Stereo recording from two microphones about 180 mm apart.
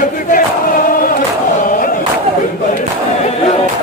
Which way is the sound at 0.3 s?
50° left (ahead or behind).